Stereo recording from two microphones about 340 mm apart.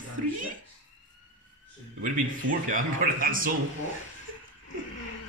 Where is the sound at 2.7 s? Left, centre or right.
Right.